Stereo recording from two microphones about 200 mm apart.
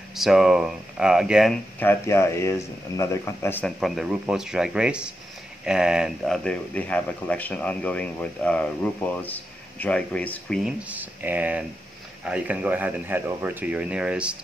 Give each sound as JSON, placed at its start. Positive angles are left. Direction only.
{"t": 0.1, "sound": "speech", "side_deg": 0}
{"t": 10.6, "sound": "speech", "side_deg": -5}